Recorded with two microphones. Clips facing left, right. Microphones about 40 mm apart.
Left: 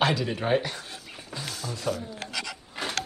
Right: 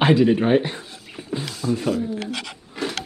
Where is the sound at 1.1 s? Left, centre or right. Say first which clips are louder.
Right 11 dB; right.